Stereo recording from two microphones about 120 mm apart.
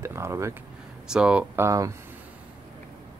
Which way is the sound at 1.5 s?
25° right (ahead or behind).